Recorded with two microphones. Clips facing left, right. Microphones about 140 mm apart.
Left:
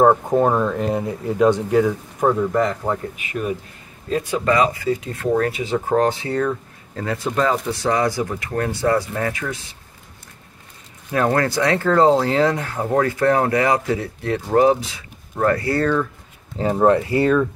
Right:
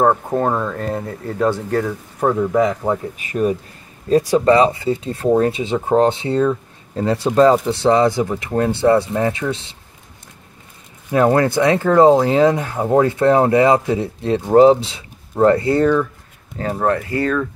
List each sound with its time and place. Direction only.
0.0 s speech: 10° left (ahead or behind)
2.4 s speech: 5° right (ahead or behind)
3.2 s speech: 35° right (ahead or behind)
11.1 s speech: 20° right (ahead or behind)
16.5 s speech: 15° left (ahead or behind)